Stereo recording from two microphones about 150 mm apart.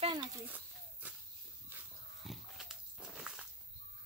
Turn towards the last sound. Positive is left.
turn(degrees=-5)  # may be behind; listen again after turning